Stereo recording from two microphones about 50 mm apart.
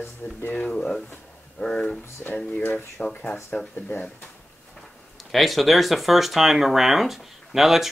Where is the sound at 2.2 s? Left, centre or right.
Left.